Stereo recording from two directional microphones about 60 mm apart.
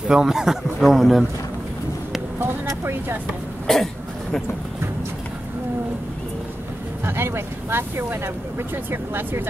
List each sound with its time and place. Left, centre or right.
0.1 s a man's voice: centre
2.8 s speech: right
3.3 s cough: centre
7.1 s speech: right